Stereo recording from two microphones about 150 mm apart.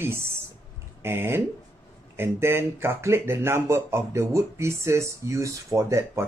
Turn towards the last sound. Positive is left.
turn(degrees=-20)  # may be behind; listen again after turning